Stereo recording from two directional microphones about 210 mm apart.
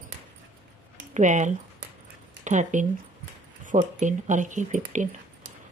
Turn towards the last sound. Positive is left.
turn(degrees=-35)  # may be behind; listen again after turning